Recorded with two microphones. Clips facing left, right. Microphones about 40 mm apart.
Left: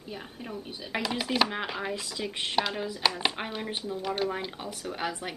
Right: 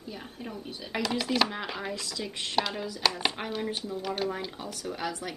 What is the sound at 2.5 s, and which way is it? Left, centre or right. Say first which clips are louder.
Speech: even; centre.